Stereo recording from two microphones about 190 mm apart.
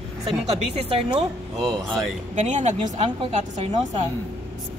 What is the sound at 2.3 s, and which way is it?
A woman's voice, 40° right (ahead or behind).